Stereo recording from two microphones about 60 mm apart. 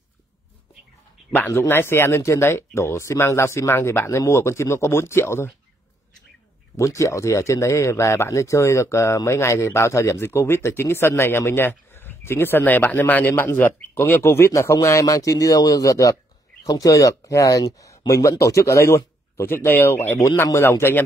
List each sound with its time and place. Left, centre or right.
1.5 s speech: left
6.8 s speech: left
10.1 s speech: left
13.3 s speech: left
13.6 s speech: left
14.5 s speech: left